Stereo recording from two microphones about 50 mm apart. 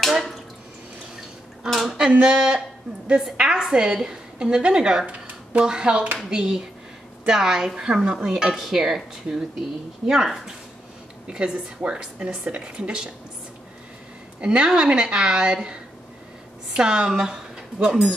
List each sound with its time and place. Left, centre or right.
0.0 s bathtub: centre
1.9 s a woman's voice: centre
14.4 s a woman's voice: right